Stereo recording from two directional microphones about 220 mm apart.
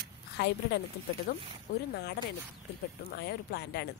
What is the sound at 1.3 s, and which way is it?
Speech, 45° left (ahead or behind).